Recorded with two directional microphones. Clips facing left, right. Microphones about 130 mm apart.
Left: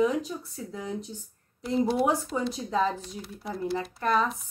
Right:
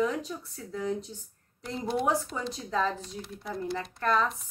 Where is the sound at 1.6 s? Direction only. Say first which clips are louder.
Left 4 dB; 5° left (ahead or behind).